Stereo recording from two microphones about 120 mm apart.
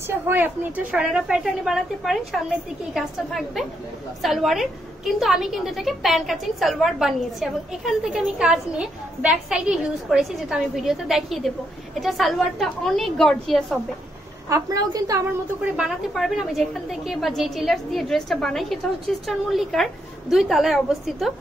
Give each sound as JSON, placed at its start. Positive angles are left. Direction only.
{"t": 0.0, "sound": "a woman's voice", "side_deg": -15}
{"t": 14.5, "sound": "a woman's voice", "side_deg": -30}
{"t": 15.6, "sound": "a woman's voice", "side_deg": -5}